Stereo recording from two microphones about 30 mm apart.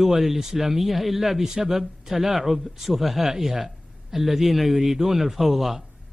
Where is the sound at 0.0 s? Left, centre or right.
Centre.